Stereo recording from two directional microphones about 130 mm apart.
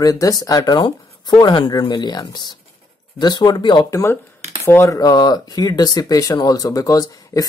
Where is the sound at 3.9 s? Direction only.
20° left (ahead or behind).